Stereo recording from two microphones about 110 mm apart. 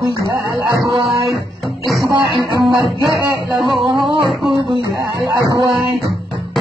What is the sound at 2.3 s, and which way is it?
Music, centre (ahead or behind).